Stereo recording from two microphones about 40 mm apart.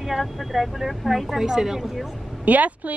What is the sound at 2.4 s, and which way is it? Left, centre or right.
Speech, right.